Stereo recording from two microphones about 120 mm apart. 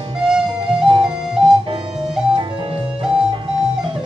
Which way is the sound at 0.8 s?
40° right (ahead or behind).